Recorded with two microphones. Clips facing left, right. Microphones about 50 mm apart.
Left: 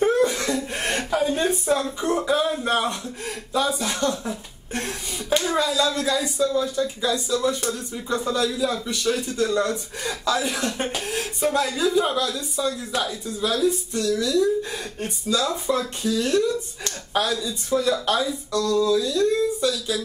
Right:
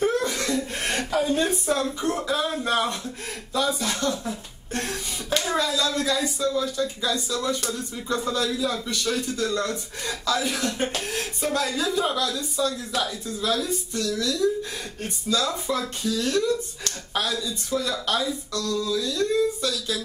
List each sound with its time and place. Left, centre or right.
0.0 s chuckle: centre
0.7 s a sound: centre
3.5 s speech: centre
4.3 s a sound: centre
5.6 s speech: centre
13.9 s speech: left; by 15.9 s centre
16.0 s speech: left
18.5 s speech: left